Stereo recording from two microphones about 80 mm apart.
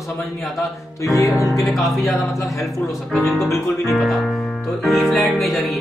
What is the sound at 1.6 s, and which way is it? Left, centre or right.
Music, centre.